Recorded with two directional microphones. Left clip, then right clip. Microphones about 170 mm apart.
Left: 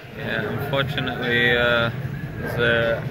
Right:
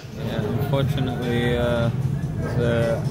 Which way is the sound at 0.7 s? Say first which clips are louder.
Left 5 dB; 15° right (ahead or behind).